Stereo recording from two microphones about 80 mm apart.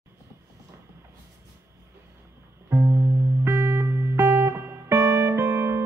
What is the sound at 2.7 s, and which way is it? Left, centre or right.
Music, right.